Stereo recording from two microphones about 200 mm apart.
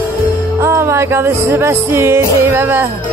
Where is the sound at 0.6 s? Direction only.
15° right (ahead or behind).